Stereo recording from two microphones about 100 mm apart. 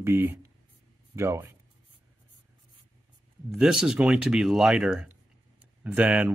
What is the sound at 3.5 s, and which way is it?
Speech, 5° right (ahead or behind).